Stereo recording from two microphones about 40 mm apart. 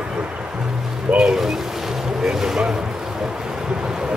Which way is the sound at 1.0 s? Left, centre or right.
Centre.